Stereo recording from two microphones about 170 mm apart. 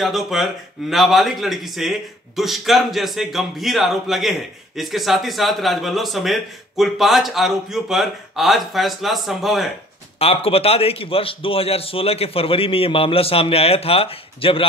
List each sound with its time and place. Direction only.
0.0 s speech: centre (ahead or behind)
10.1 s a man's voice: 35° left (ahead or behind)